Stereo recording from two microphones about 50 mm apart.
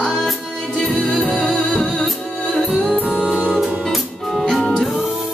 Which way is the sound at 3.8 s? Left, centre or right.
Centre.